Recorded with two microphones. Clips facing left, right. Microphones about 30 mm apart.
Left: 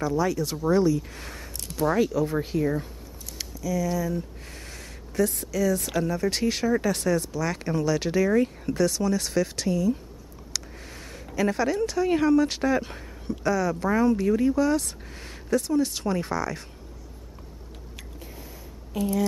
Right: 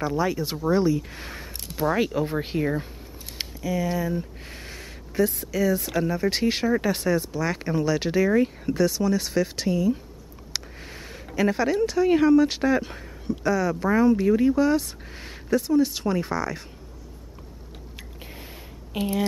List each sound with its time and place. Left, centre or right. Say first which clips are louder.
0.0 s speech: even; right
2.0 s speech: left 1 dB; right
5.8 s speech: right 1 dB; centre
6.0 s speech: right 2 dB; right
18.2 s a sound: right 3 dB; right
18.9 s speech: even; right